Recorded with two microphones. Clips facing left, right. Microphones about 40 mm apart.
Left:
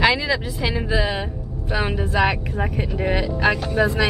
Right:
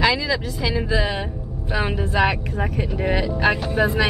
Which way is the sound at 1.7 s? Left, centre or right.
Centre.